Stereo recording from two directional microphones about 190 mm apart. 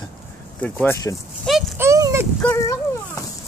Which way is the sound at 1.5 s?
5° left (ahead or behind).